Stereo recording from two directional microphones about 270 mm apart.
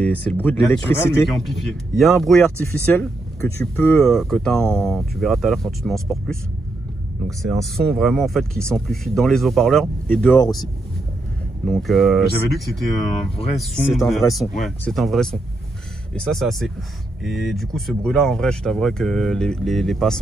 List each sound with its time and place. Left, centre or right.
0.0 s speech: centre
7.7 s speech: centre
12.9 s speech: centre
13.6 s speech: centre